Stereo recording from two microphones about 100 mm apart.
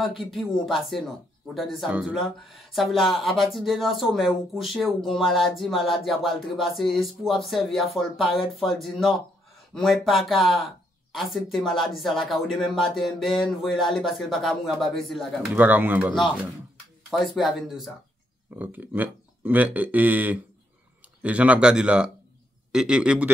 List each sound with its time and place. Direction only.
0.2 s speech: centre (ahead or behind)
15.5 s speech: 15° right (ahead or behind)
17.4 s speech: centre (ahead or behind)
18.6 s speech: 20° right (ahead or behind)